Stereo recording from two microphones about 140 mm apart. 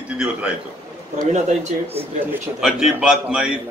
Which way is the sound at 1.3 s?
50° right (ahead or behind).